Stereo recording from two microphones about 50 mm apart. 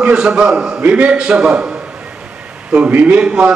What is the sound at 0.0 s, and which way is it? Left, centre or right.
A man's voice, right.